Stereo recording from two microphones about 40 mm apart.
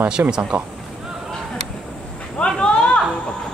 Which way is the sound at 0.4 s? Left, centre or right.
Right.